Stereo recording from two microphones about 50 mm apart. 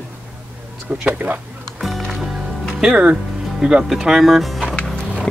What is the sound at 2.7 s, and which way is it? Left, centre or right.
Speech, centre.